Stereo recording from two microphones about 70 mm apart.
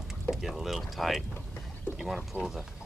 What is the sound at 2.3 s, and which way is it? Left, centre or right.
Speech, right.